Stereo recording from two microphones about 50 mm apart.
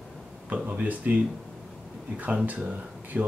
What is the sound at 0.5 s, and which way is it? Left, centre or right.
Speech, right.